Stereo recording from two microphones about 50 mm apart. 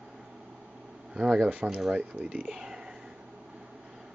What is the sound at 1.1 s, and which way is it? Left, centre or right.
Speech, centre.